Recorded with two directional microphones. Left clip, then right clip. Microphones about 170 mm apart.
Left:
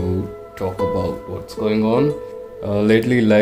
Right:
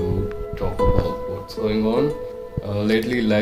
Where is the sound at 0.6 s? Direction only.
65° left (ahead or behind).